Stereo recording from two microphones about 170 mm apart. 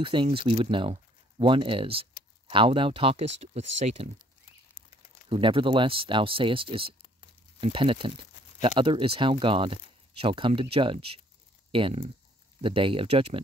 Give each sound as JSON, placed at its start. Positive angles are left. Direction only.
{"t": 0.0, "sound": "speech", "side_deg": -30}
{"t": 5.3, "sound": "speech", "side_deg": -30}